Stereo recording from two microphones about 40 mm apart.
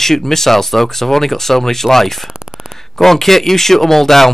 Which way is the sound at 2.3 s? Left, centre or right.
Centre.